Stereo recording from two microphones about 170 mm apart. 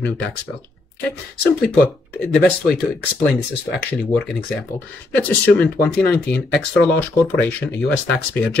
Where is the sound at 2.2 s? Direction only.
5° left (ahead or behind).